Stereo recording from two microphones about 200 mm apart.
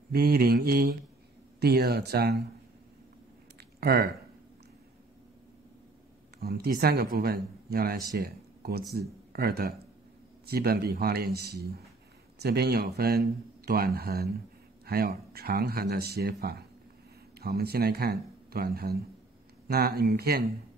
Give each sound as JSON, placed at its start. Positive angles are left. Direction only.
{"t": 0.1, "sound": "speech", "side_deg": -50}
{"t": 3.8, "sound": "speech", "side_deg": -50}
{"t": 6.4, "sound": "speech", "side_deg": -50}